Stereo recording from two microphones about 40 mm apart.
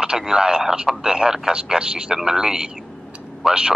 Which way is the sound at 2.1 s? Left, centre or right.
Centre.